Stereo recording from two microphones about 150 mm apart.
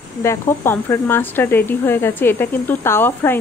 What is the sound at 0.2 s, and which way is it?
Speech, 15° left (ahead or behind).